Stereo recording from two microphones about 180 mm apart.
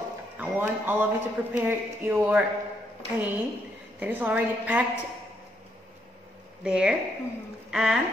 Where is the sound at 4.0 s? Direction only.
10° right (ahead or behind).